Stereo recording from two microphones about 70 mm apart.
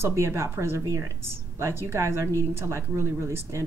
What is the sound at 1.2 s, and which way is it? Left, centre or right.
Speech, right.